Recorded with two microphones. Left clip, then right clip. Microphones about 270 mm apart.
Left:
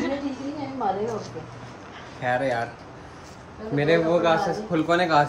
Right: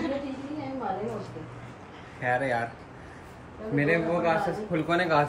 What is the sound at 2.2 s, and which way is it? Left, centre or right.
Speech, centre.